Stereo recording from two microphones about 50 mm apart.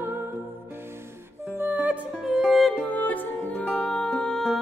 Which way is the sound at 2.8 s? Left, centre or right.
Left.